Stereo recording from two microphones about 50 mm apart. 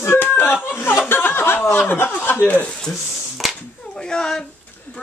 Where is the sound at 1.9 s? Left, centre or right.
Left.